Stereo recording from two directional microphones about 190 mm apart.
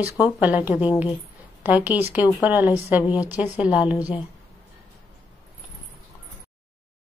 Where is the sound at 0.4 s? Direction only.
10° right (ahead or behind).